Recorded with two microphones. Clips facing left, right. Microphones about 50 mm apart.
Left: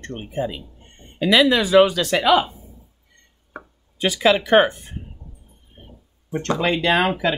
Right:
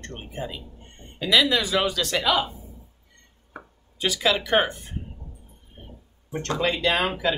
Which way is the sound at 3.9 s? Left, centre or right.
Left.